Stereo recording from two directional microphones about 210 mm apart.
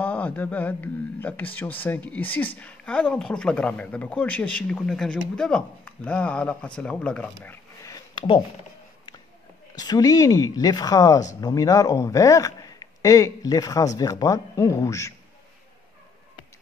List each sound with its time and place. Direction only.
0.0 s a man's voice: 5° left (ahead or behind)
7.8 s a sound: 20° left (ahead or behind)
9.8 s a man's voice: 20° left (ahead or behind)